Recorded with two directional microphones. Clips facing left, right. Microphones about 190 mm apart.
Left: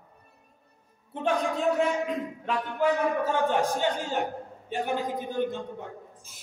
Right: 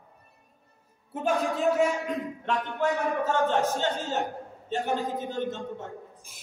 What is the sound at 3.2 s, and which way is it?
Speech, 10° left (ahead or behind).